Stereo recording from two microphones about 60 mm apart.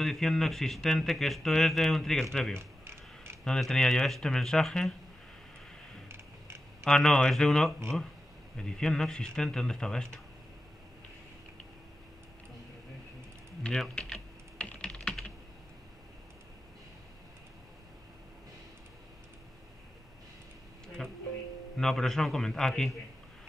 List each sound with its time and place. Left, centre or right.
0.0 s speech: centre
2.6 s a sound: right
3.4 s speech: centre
6.0 s music: right
6.8 s speech: centre
13.6 s typing: centre
21.0 s speech: centre